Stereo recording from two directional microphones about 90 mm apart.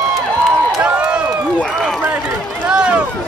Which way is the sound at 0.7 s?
10° right (ahead or behind).